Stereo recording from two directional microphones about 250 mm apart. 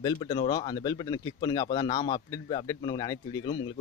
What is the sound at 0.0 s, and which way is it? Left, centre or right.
Speech, centre.